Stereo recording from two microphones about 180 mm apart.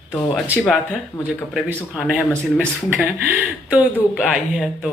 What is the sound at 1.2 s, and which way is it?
Speech, 5° right (ahead or behind).